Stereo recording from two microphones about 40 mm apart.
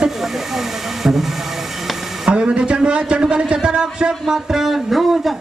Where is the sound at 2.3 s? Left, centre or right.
Right.